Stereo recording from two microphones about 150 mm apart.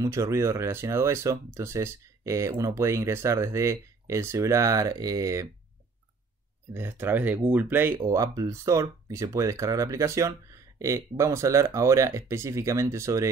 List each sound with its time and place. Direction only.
0.0 s speech: 20° right (ahead or behind)
6.7 s speech: 15° right (ahead or behind)